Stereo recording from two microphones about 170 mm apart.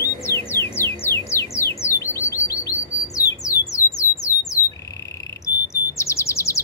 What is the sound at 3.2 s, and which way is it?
Squawk, 20° left (ahead or behind).